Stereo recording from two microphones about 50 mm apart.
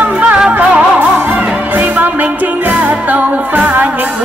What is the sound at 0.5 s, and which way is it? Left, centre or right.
Music, right.